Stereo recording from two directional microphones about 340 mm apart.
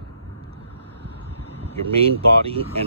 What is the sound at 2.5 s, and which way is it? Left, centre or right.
Speech, centre.